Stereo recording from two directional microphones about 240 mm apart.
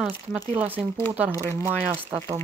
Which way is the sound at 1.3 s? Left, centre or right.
Centre.